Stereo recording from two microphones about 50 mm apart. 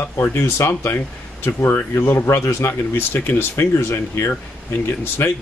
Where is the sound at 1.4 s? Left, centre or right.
Left.